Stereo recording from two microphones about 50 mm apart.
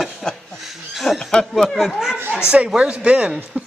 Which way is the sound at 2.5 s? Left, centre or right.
Right.